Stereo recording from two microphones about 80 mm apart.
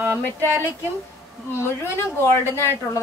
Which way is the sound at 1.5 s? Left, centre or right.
Left.